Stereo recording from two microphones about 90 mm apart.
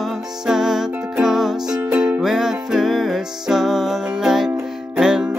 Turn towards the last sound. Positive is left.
turn(degrees=-5)  # may be behind; listen again after turning